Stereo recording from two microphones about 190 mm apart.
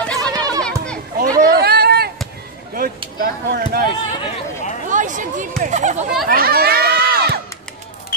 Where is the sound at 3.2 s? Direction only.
50° right (ahead or behind).